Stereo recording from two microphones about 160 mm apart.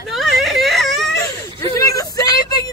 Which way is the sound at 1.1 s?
20° left (ahead or behind).